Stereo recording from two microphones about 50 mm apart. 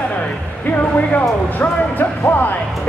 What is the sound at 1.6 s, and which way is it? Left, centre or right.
Speech, left.